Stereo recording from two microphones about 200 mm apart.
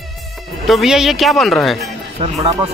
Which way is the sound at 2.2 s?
30° right (ahead or behind).